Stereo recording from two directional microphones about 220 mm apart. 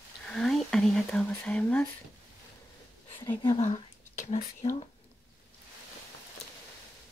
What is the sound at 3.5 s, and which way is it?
Speech, 35° left (ahead or behind).